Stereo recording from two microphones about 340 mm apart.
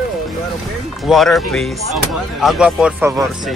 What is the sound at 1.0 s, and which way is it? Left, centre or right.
Speech, centre.